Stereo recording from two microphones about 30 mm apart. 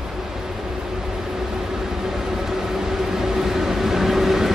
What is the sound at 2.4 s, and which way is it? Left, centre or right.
Vehicle, centre.